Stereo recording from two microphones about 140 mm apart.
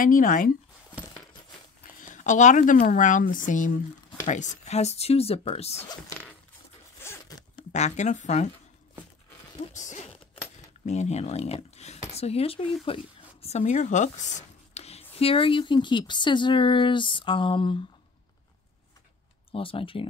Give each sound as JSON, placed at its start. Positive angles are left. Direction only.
{"t": 0.0, "sound": "speech", "side_deg": 75}
{"t": 2.0, "sound": "speech", "side_deg": 65}
{"t": 5.8, "sound": "speech", "side_deg": 10}
{"t": 7.0, "sound": "zipper", "side_deg": 20}
{"t": 7.7, "sound": "speech", "side_deg": 55}
{"t": 9.6, "sound": "a sound", "side_deg": 55}
{"t": 10.9, "sound": "speech", "side_deg": 55}
{"t": 12.8, "sound": "zipper", "side_deg": 45}
{"t": 15.1, "sound": "speech", "side_deg": 40}
{"t": 19.5, "sound": "speech", "side_deg": 40}